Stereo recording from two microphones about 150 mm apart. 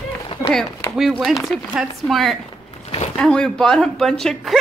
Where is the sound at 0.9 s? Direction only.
Centre (ahead or behind).